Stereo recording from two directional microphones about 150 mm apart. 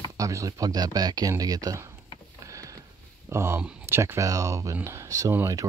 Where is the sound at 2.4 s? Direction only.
20° right (ahead or behind).